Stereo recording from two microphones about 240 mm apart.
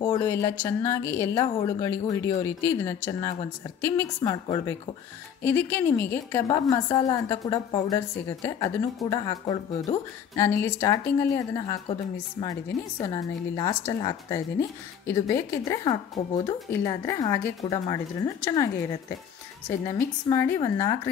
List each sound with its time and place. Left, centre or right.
0.0 s a woman's voice: centre
19.9 s a woman's voice: centre